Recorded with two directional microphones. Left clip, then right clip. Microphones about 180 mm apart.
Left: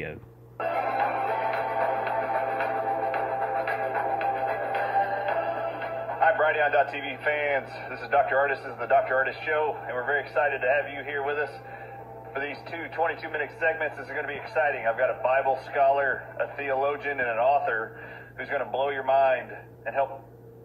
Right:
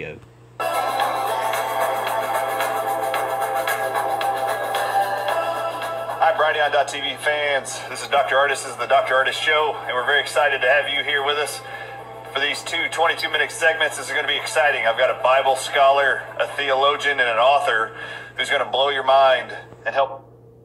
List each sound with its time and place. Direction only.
0.7 s music: 35° right (ahead or behind)
8.1 s speech: 40° right (ahead or behind)